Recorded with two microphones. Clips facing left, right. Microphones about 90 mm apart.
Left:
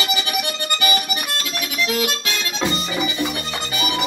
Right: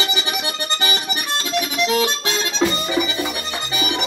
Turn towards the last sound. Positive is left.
turn(degrees=-25)  # may be behind; listen again after turning